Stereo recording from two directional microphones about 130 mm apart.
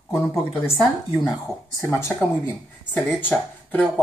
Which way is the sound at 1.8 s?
20° left (ahead or behind).